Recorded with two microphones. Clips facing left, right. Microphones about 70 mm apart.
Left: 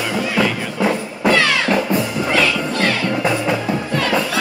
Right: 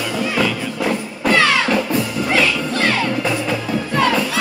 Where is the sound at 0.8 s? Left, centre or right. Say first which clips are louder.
Left 4 dB; centre.